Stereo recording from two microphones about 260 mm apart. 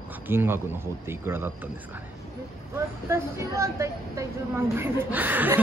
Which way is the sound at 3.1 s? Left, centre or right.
Centre.